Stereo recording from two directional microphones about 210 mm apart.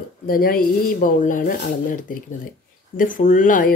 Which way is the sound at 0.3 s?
45° left (ahead or behind).